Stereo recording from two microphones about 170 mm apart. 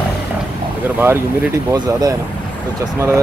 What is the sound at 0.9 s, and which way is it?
Speech, 10° right (ahead or behind).